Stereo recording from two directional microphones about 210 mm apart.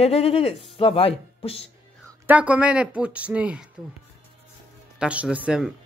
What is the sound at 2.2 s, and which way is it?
Speech, 5° right (ahead or behind).